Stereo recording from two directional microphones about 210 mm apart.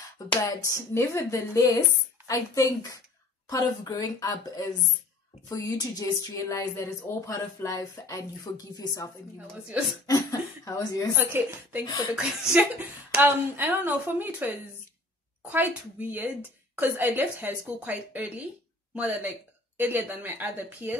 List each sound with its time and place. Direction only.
0.3 s a woman's voice: 15° left (ahead or behind)
11.1 s a woman's voice: 10° right (ahead or behind)
15.5 s a woman's voice: 10° right (ahead or behind)